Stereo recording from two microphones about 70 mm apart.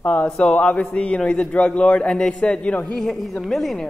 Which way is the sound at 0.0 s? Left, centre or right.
Centre.